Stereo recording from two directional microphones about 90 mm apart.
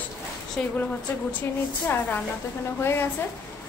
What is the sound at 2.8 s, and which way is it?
Speech, 25° left (ahead or behind).